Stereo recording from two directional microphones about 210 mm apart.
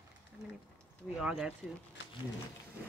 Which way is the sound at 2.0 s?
60° left (ahead or behind).